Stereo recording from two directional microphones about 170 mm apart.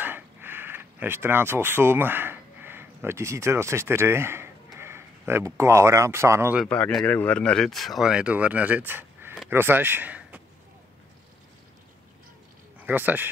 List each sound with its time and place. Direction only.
0.0 s a sound: 10° right (ahead or behind)
4.7 s speech: 15° right (ahead or behind)
6.7 s speech: 5° left (ahead or behind)
12.8 s speech: 10° right (ahead or behind)